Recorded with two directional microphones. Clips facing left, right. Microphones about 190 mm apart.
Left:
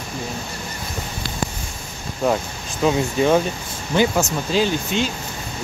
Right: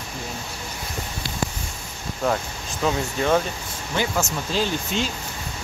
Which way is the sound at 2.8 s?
15° left (ahead or behind).